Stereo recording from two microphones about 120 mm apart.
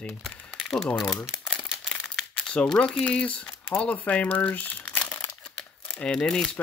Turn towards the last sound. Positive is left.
turn(degrees=5)  # may be behind; listen again after turning